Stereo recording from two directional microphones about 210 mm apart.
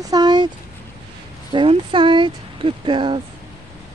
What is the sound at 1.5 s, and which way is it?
Speech, 25° right (ahead or behind).